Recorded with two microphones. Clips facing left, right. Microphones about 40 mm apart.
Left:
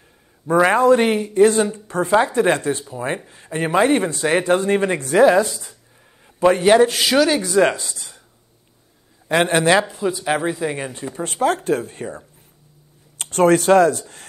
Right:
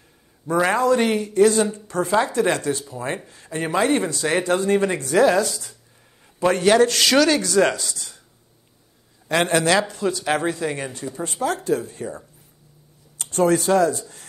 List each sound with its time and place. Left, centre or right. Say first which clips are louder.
0.5 s speech: left 5 dB; left
9.3 s speech: left 3 dB; left
11.1 s speech: left 5 dB; left
13.2 s speech: left 4 dB; left